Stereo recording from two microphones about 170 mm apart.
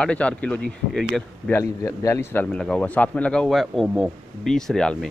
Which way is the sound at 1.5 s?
15° left (ahead or behind).